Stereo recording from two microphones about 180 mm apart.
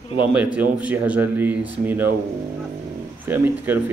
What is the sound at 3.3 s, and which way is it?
Speech, 10° right (ahead or behind).